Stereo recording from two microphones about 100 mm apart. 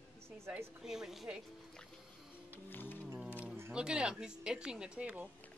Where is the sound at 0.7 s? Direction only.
5° right (ahead or behind).